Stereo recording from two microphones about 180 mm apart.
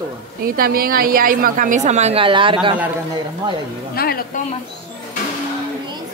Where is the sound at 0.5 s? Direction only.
55° right (ahead or behind); by 2.8 s 30° right (ahead or behind).